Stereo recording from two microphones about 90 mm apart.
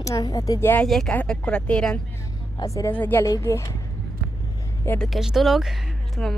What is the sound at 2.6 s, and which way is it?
Speech, 35° left (ahead or behind).